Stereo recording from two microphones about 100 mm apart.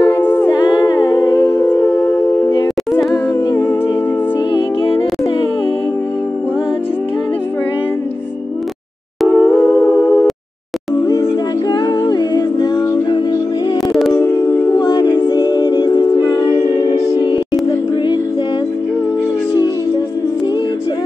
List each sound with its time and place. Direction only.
0.0 s a capella: 20° left (ahead or behind)
0.7 s humming: 45° left (ahead or behind)
1.5 s humming: 25° left (ahead or behind)
4.6 s music: 65° left (ahead or behind)
9.3 s humming: 15° left (ahead or behind)
11.7 s humming: 40° left (ahead or behind)
14.1 s music: 40° left (ahead or behind)